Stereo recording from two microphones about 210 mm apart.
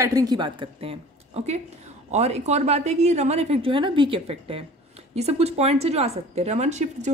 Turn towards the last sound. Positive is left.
turn(degrees=-35)  # may be behind; listen again after turning